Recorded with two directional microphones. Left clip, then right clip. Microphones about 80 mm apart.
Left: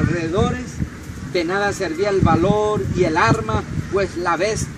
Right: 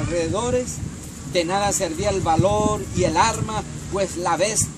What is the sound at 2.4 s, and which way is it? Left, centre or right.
Speech, left.